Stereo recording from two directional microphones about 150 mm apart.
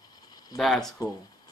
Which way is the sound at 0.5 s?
Centre (ahead or behind).